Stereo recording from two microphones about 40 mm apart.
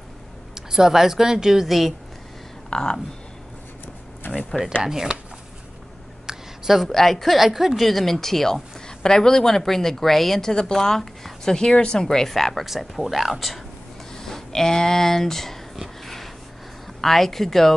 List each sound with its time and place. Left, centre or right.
0.6 s speech: centre
2.7 s speech: left
5.1 s speech: right
6.2 s a sound: centre
6.8 s a woman's voice: centre
7.3 s a woman's voice: centre
11.7 s a woman's voice: left; by 12.6 s centre
12.6 s a woman's voice: centre
14.1 s a sound: centre
17.0 s a woman's voice: centre